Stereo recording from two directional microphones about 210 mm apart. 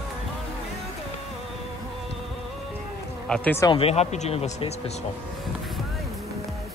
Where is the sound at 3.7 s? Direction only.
30° left (ahead or behind).